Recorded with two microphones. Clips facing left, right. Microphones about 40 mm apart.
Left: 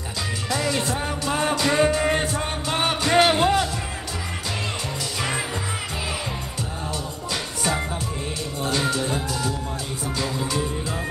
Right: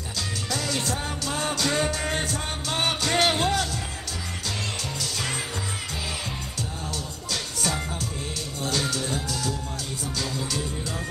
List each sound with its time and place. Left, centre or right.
0.5 s music: left
8.6 s music: left